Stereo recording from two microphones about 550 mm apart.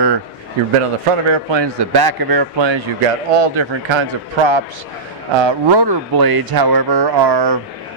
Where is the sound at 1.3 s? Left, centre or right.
Right.